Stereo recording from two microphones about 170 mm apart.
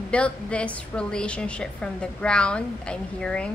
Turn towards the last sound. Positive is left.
turn(degrees=5)  # may be behind; listen again after turning